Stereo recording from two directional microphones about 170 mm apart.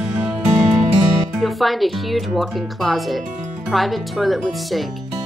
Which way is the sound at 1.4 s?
Centre (ahead or behind).